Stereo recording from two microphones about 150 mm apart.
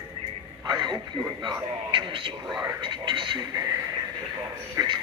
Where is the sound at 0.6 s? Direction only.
30° right (ahead or behind).